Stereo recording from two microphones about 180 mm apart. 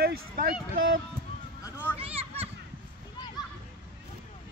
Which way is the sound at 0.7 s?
55° right (ahead or behind).